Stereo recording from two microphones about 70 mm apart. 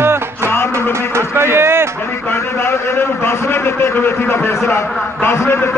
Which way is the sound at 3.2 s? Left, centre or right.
Left.